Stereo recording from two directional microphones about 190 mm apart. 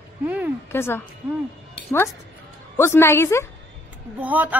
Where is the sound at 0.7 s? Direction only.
10° left (ahead or behind).